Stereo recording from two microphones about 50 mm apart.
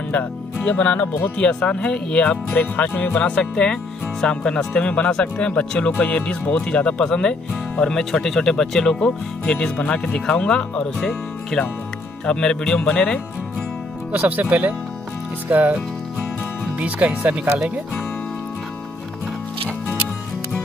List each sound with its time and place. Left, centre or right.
0.1 s speech: left
1.4 s speech: centre
2.5 s speech: left
3.5 s speech: centre
14.1 s speech: right